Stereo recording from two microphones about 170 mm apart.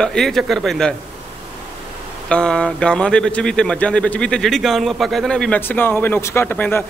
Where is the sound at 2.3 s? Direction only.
5° left (ahead or behind).